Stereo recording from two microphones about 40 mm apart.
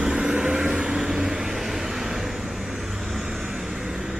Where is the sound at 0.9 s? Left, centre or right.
Centre.